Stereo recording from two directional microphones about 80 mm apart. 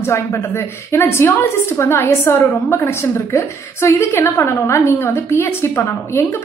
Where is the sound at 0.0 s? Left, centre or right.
Left.